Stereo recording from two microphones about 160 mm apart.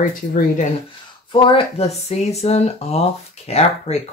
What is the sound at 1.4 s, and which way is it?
Speech, 35° left (ahead or behind).